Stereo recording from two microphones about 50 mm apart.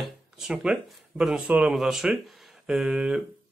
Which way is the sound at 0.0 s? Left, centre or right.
Centre.